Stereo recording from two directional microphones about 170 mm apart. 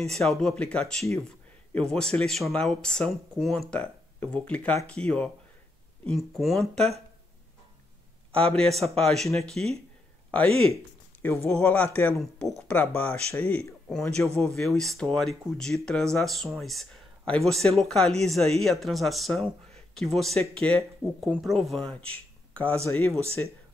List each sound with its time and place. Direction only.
0.0 s speech: centre (ahead or behind)
8.3 s speech: 5° left (ahead or behind)
22.1 s a sound: 10° left (ahead or behind)
22.8 s speech: 15° left (ahead or behind)